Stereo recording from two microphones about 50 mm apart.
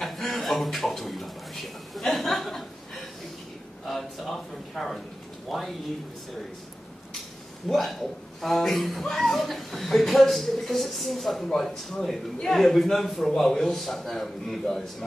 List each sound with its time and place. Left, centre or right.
0.0 s a sound: centre
3.8 s a man's voice: centre
7.6 s speech: centre